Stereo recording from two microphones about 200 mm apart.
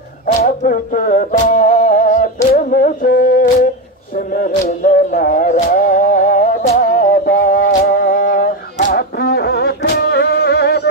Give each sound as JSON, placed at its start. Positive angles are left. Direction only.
{"t": 0.4, "sound": "music", "side_deg": 45}